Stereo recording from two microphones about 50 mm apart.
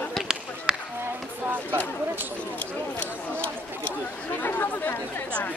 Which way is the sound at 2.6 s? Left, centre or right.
Left.